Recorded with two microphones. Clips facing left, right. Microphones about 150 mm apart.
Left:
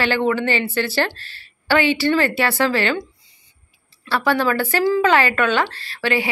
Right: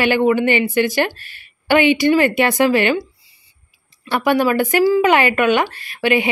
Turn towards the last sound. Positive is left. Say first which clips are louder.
# right 4 dB
turn(degrees=-15)  # may be behind; listen again after turning